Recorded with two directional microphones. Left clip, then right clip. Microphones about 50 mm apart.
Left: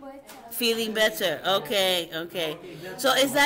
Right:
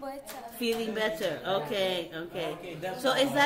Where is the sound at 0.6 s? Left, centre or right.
Left.